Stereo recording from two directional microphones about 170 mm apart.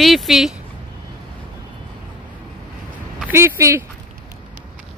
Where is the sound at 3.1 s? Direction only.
10° right (ahead or behind).